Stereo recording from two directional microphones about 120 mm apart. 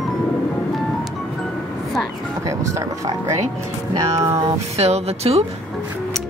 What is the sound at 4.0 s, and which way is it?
Speech, 25° right (ahead or behind).